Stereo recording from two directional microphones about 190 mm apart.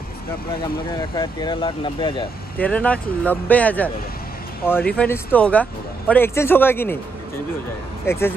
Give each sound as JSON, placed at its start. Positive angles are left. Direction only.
{"t": 0.9, "sound": "speech", "side_deg": 25}
{"t": 2.5, "sound": "speech", "side_deg": 10}
{"t": 8.1, "sound": "speech", "side_deg": 15}